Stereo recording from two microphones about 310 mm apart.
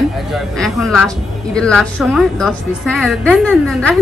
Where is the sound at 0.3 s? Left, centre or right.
Centre.